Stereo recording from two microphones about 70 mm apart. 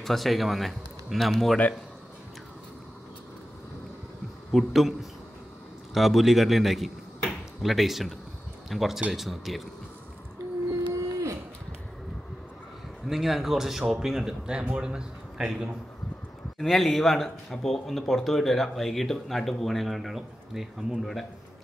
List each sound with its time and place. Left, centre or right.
0.0 s speech: centre
4.5 s a man's voice: centre
5.9 s speech: centre
10.9 s a sound: right
13.1 s a man's voice: centre